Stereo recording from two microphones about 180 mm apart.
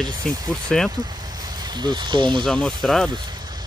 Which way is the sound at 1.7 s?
25° right (ahead or behind).